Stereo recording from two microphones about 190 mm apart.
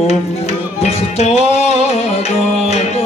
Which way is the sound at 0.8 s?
35° left (ahead or behind).